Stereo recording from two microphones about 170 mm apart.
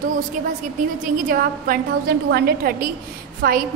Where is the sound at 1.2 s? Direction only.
55° right (ahead or behind).